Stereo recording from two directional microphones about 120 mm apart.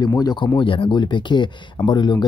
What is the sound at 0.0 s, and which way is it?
Speech, 35° left (ahead or behind).